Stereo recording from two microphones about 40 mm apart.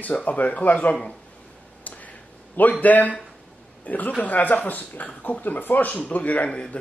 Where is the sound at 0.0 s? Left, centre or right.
Left.